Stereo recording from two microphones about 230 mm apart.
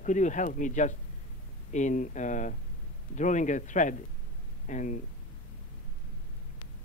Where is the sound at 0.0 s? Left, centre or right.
Left.